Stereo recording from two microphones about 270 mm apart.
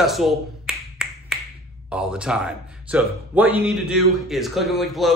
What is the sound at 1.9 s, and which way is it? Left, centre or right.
Speech, centre.